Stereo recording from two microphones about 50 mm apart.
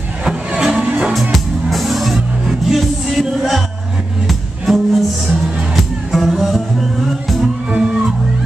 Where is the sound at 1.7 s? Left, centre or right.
Centre.